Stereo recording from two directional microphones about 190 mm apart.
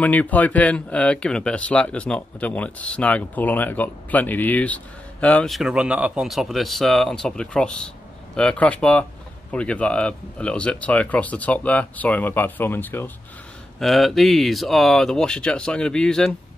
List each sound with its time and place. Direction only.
0.0 s speech: 10° left (ahead or behind)
13.7 s speech: centre (ahead or behind)